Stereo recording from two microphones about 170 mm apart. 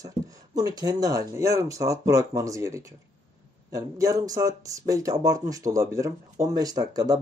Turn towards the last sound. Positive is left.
turn(degrees=-20)  # may be behind; listen again after turning